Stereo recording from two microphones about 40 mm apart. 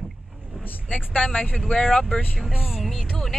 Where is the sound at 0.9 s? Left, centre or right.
Left.